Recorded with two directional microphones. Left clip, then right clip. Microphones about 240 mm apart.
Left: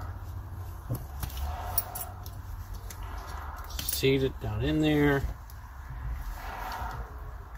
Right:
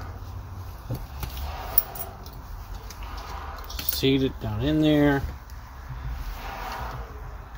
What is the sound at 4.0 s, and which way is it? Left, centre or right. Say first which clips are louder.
Speech: right 3 dB; right.